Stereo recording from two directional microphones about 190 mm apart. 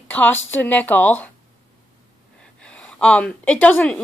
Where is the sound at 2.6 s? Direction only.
5° left (ahead or behind).